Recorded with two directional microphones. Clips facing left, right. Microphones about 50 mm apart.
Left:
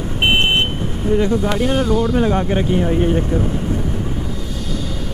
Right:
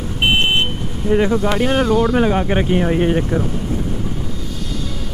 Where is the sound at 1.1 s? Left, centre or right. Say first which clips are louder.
Right 2 dB; right.